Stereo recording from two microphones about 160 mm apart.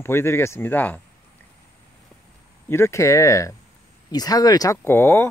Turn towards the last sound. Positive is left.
turn(degrees=15)  # may be behind; listen again after turning